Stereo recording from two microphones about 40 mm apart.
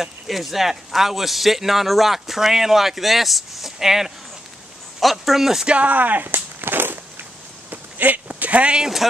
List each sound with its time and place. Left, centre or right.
0.0 s a man's voice: centre
5.7 s speech: right
6.3 s walk: right
7.7 s a sound: right